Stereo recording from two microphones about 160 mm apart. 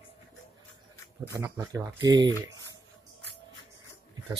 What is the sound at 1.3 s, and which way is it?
Speech, 15° right (ahead or behind).